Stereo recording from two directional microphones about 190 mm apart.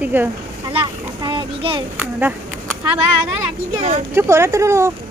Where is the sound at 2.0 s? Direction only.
10° right (ahead or behind).